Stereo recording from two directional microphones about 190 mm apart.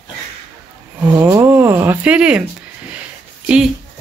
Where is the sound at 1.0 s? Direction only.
15° right (ahead or behind).